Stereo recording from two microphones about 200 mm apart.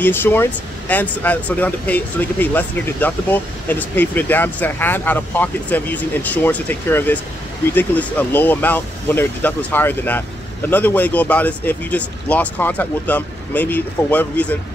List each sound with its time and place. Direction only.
0.0 s speech: 10° left (ahead or behind)